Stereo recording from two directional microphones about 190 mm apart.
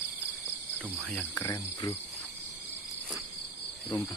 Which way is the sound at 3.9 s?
10° left (ahead or behind).